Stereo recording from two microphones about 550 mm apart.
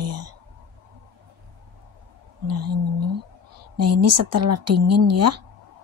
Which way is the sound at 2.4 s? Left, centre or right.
Right.